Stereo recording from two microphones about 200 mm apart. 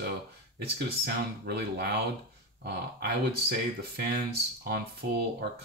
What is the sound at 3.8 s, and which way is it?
Speech, 50° right (ahead or behind).